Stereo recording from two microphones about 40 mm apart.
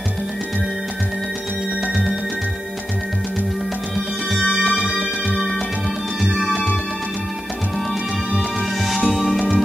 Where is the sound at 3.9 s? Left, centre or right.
Centre.